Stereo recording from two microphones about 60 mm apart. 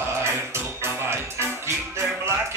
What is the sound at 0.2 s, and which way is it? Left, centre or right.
Music, right.